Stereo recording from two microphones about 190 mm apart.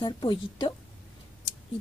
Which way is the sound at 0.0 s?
25° left (ahead or behind).